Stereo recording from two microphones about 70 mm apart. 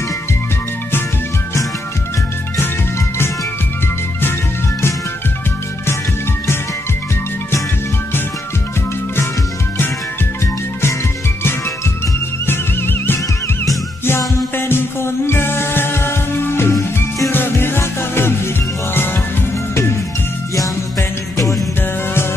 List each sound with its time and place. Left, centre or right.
10.4 s music: left
12.4 s music: left
21.4 s music: left